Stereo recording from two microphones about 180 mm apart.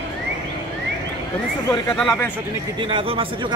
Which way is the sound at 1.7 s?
5° left (ahead or behind).